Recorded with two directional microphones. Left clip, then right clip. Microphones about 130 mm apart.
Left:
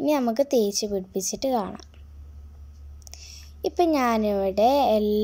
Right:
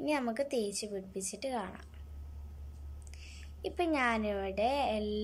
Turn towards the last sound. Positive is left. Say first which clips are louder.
# left 12 dB
turn(degrees=35)  # may be behind; listen again after turning